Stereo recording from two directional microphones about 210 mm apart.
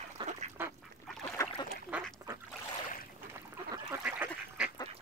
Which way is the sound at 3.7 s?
10° right (ahead or behind).